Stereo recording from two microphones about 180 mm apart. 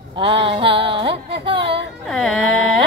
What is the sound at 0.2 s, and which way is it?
Music, 30° right (ahead or behind).